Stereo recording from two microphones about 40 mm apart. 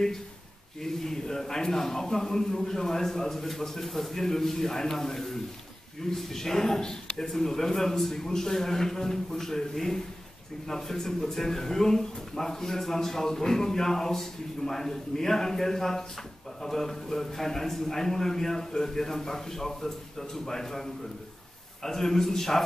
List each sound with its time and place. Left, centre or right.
0.8 s speech: centre